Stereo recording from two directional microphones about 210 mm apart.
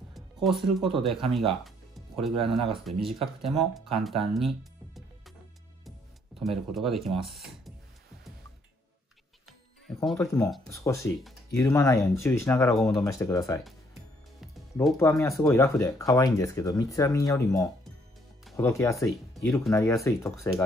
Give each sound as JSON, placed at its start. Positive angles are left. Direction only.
{"t": 0.1, "sound": "speech", "side_deg": 0}
{"t": 6.4, "sound": "speech", "side_deg": 0}
{"t": 10.0, "sound": "speech", "side_deg": 10}
{"t": 12.7, "sound": "speech", "side_deg": 0}
{"t": 13.0, "sound": "speech", "side_deg": 15}
{"t": 14.4, "sound": "music", "side_deg": 0}
{"t": 15.0, "sound": "speech", "side_deg": 15}
{"t": 19.4, "sound": "music", "side_deg": 0}
{"t": 19.7, "sound": "speech", "side_deg": 15}